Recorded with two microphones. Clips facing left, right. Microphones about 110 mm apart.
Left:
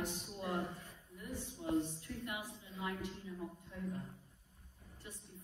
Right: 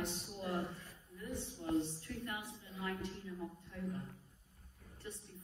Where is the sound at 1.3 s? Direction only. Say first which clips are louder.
Right 1 dB; 25° right (ahead or behind).